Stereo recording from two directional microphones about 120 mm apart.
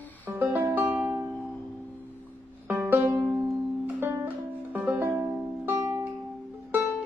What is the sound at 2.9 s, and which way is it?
Music, 15° right (ahead or behind).